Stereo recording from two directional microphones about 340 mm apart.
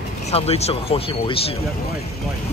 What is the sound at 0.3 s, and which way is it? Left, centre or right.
Speech, centre.